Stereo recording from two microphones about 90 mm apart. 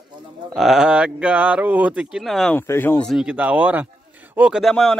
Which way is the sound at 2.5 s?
25° left (ahead or behind).